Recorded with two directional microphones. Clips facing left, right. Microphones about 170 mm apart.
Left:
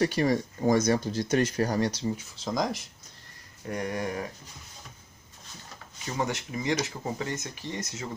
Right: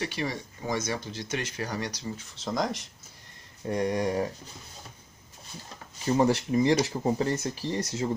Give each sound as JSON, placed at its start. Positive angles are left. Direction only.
{"t": 0.0, "sound": "speech", "side_deg": 45}
{"t": 1.9, "sound": "speech", "side_deg": 25}
{"t": 2.3, "sound": "speech", "side_deg": 0}
{"t": 3.6, "sound": "speech", "side_deg": -25}
{"t": 6.0, "sound": "speech", "side_deg": -35}